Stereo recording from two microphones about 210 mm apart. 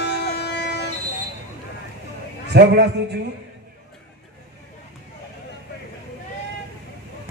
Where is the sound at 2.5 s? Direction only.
50° right (ahead or behind).